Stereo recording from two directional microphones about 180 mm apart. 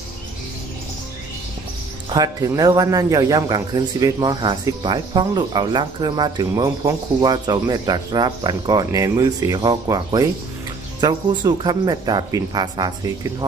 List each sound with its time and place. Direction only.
2.0 s a man's voice: 20° right (ahead or behind)